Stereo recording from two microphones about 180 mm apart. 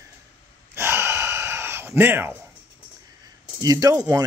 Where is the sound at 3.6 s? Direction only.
20° right (ahead or behind).